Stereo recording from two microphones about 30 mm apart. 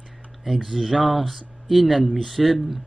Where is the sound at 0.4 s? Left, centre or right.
Centre.